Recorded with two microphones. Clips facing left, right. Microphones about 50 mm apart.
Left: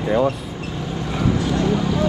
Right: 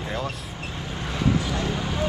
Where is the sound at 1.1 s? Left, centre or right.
Left.